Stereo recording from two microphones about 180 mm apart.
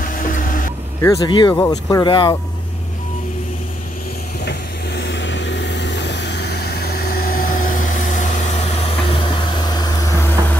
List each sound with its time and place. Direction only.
0.1 s vehicle: 50° left (ahead or behind)
1.0 s speech: 20° left (ahead or behind)
4.5 s vehicle: 75° left (ahead or behind); by 10.6 s 20° left (ahead or behind)